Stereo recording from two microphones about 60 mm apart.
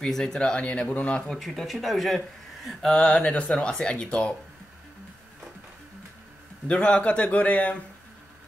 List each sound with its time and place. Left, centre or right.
0.0 s a man's voice: centre
1.2 s speech: centre
2.9 s speech: centre
6.7 s a man's voice: centre